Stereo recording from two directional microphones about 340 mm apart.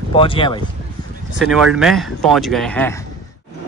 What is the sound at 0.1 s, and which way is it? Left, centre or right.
Speech, centre.